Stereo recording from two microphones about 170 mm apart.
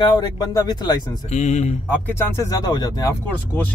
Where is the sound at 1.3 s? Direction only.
40° left (ahead or behind).